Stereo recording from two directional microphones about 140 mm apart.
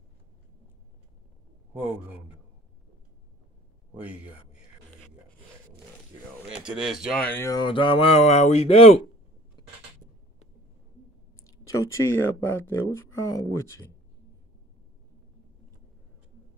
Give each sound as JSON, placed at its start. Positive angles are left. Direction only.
{"t": 3.9, "sound": "a man's voice", "side_deg": -10}
{"t": 6.6, "sound": "speech", "side_deg": -5}
{"t": 7.2, "sound": "speech", "side_deg": 10}
{"t": 7.4, "sound": "speech", "side_deg": 30}
{"t": 11.4, "sound": "speech", "side_deg": 25}